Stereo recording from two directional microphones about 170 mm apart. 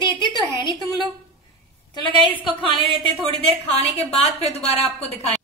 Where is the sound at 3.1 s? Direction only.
35° left (ahead or behind).